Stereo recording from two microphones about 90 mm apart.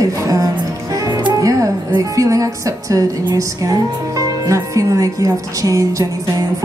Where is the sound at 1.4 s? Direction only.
40° right (ahead or behind).